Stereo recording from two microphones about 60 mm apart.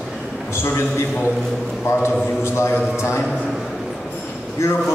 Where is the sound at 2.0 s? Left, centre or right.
Left.